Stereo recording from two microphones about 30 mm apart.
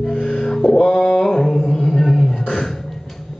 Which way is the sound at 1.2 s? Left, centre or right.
Centre.